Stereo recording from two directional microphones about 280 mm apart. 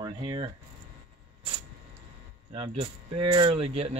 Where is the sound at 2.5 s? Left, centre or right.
Centre.